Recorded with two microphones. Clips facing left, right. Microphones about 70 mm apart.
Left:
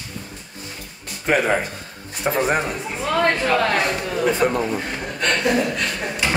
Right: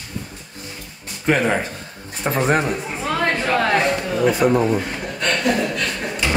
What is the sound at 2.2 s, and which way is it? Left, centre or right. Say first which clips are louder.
Speech: right 1 dB; centre.